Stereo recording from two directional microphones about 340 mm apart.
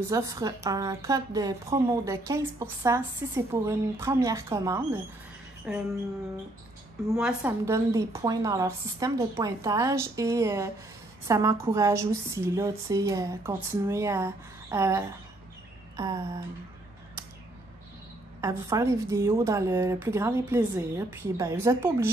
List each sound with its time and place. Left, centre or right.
0.1 s a woman's voice: centre
5.7 s a sound: centre
7.1 s a woman's voice: centre
18.4 s a woman's voice: centre